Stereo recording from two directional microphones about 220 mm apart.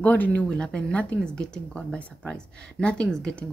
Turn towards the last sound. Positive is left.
turn(degrees=5)  # may be behind; listen again after turning